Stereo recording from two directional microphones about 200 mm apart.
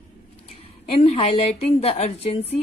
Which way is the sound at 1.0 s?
30° left (ahead or behind).